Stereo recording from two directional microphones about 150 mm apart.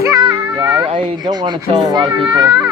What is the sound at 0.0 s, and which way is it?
Cat, 25° right (ahead or behind).